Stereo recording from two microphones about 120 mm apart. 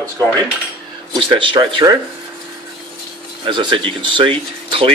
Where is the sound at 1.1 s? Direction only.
45° right (ahead or behind).